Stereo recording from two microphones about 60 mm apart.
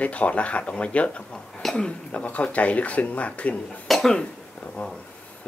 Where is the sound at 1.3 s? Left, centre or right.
Centre.